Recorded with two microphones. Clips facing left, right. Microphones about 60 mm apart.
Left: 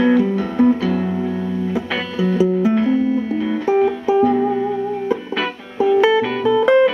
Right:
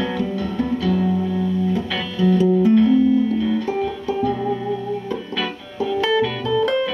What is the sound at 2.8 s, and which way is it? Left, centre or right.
Music, left.